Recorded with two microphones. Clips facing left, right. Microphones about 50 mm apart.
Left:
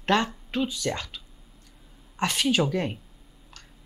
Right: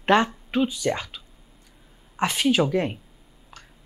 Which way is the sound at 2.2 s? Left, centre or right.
Centre.